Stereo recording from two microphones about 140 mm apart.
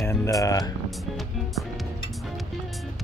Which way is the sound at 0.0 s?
20° left (ahead or behind).